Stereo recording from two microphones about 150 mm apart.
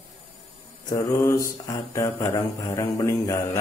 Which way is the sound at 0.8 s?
25° left (ahead or behind).